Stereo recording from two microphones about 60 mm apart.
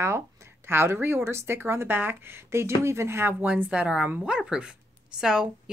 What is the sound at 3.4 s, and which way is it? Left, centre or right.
A woman's voice, right.